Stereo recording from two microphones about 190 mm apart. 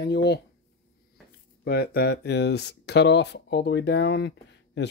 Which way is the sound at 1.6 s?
55° left (ahead or behind).